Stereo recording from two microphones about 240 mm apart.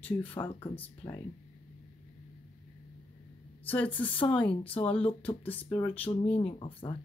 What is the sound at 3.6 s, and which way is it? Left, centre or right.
Speech, centre.